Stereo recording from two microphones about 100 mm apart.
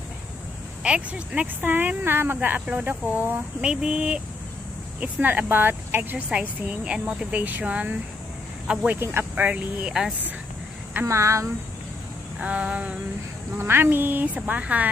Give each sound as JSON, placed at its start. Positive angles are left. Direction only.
{"t": 0.8, "sound": "speech", "side_deg": -10}
{"t": 8.9, "sound": "speech", "side_deg": -25}
{"t": 9.3, "sound": "speech", "side_deg": -15}
{"t": 11.1, "sound": "speech", "side_deg": -30}
{"t": 12.4, "sound": "speech", "side_deg": -10}
{"t": 13.6, "sound": "speech", "side_deg": -25}